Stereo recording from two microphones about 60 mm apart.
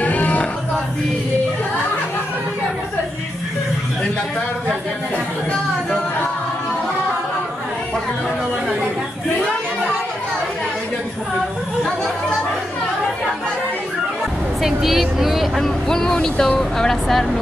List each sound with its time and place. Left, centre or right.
0.0 s music: left
14.6 s speech: centre